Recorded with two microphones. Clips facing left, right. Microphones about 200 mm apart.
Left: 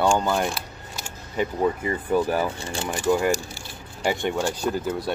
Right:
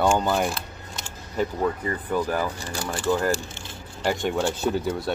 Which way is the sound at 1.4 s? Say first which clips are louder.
Left 1 dB; 10° left (ahead or behind).